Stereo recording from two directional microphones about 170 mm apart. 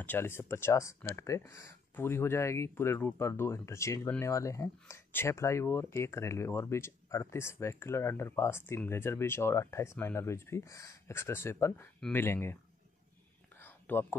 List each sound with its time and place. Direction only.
0.0 s speech: 10° left (ahead or behind)
13.6 s whispering: 10° left (ahead or behind)